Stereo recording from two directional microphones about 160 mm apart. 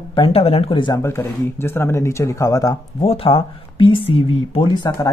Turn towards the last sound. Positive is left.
turn(degrees=30)  # may be behind; listen again after turning